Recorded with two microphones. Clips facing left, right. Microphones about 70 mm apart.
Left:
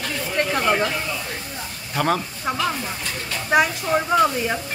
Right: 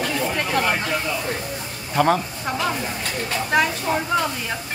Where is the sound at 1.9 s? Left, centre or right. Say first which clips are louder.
Right 3 dB; centre.